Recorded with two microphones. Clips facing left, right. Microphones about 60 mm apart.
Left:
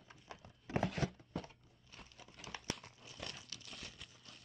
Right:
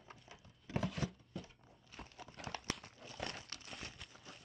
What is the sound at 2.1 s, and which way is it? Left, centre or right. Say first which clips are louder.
Crumpling: right 4 dB; right.